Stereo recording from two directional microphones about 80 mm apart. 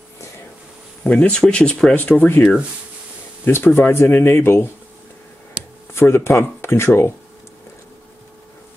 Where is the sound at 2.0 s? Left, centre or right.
Left.